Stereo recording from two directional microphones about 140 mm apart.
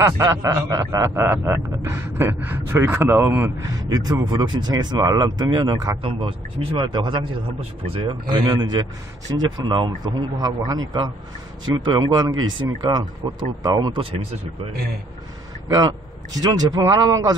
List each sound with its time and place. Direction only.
0.0 s a man's voice: 25° right (ahead or behind)
3.9 s a man's voice: 30° right (ahead or behind)
6.0 s a man's voice: 40° right (ahead or behind)
16.3 s a man's voice: 30° right (ahead or behind)